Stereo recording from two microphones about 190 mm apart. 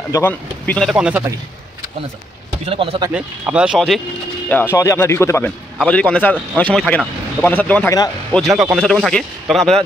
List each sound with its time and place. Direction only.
0.1 s speech: 10° left (ahead or behind); by 1.2 s 5° right (ahead or behind)
2.6 s speech: 30° right (ahead or behind)
3.1 s speech: 5° right (ahead or behind)
4.7 s speech: 15° left (ahead or behind)